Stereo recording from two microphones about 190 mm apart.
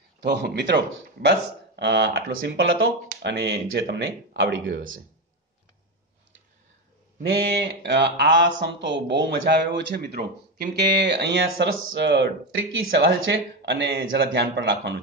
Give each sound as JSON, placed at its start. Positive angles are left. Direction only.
{"t": 0.2, "sound": "speech", "side_deg": -65}
{"t": 7.2, "sound": "speech", "side_deg": -60}